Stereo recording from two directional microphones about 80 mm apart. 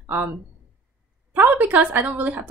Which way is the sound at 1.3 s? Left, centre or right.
Right.